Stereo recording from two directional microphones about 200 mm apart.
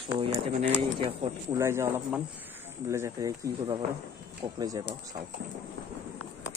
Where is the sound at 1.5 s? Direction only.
15° right (ahead or behind).